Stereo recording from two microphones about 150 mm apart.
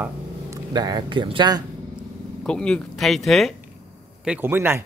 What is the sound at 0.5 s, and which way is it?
Speech, 25° right (ahead or behind).